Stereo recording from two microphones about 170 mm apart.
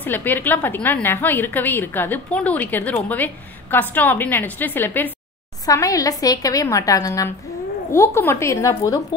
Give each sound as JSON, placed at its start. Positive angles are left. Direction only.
{"t": 0.0, "sound": "a woman's voice", "side_deg": 10}